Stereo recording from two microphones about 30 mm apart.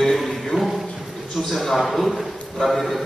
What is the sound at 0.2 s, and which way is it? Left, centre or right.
Music, centre.